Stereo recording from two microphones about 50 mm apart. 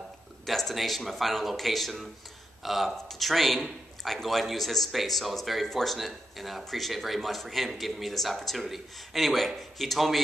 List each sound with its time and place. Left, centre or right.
0.5 s a man's voice: centre